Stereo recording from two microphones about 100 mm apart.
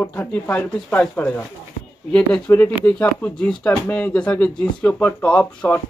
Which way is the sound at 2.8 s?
15° left (ahead or behind).